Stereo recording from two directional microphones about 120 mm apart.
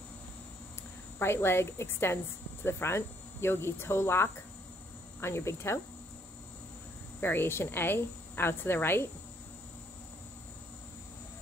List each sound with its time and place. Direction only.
1.2 s a woman's voice: 20° left (ahead or behind)
7.2 s a woman's voice: 20° left (ahead or behind)